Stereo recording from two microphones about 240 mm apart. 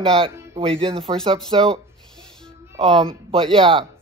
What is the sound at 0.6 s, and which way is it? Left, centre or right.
Speech, right.